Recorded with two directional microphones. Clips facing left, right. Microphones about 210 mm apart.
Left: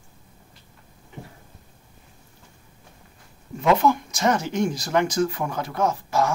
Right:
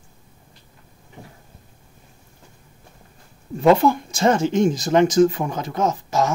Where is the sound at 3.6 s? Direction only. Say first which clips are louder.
Right 4 dB; 30° right (ahead or behind).